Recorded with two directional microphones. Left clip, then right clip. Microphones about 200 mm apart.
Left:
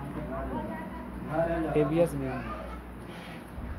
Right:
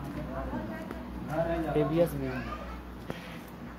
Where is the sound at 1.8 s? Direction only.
Centre (ahead or behind).